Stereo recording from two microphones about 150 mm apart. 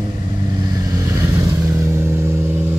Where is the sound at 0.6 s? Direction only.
25° right (ahead or behind).